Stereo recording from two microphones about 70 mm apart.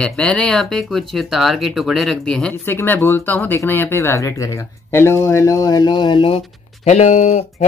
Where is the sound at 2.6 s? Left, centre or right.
Left.